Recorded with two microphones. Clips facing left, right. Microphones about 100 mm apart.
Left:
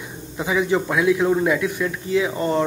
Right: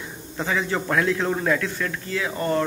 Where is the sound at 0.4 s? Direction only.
15° left (ahead or behind).